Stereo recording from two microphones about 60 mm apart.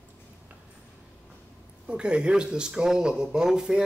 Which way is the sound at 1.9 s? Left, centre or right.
Centre.